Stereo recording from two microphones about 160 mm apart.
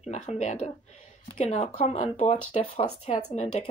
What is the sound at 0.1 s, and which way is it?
Speech, 45° left (ahead or behind).